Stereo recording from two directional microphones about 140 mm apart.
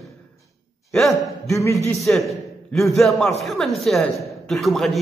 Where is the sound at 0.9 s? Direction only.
Centre (ahead or behind).